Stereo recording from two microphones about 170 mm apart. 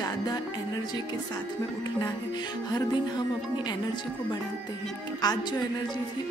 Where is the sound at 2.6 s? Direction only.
25° left (ahead or behind).